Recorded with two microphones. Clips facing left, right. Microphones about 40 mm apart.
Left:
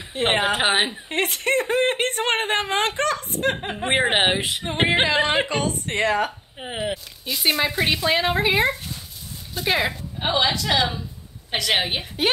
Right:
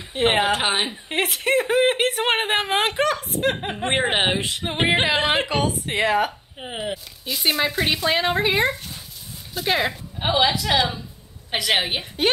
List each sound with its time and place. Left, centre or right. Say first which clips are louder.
0.1 s a woman's voice: right 2 dB; centre
0.6 s female singing: left 2 dB; centre
1.0 s a woman's voice: even; centre
4.4 s female singing: left 1 dB; centre
5.0 s a woman's voice: even; centre
6.7 s female singing: left 2 dB; centre
7.2 s a woman's voice: even; centre